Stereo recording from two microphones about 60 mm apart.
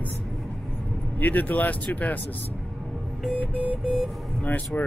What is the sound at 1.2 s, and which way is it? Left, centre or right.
Speech, left.